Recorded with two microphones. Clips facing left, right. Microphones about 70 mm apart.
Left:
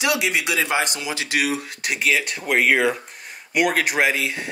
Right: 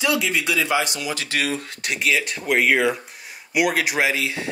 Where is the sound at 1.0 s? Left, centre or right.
Left.